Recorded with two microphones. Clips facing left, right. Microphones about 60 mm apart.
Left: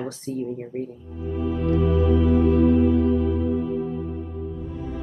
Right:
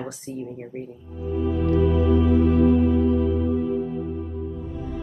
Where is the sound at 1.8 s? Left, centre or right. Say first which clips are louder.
Left 1 dB; centre.